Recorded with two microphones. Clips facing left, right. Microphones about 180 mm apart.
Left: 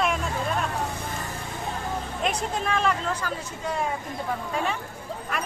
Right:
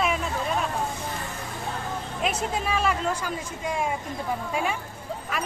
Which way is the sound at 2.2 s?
5° right (ahead or behind).